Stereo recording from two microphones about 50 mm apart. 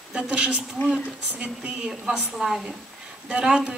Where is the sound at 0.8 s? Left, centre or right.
Left.